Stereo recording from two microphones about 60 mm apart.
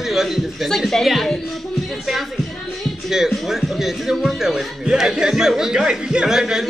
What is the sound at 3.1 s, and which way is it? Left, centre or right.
Speech, centre.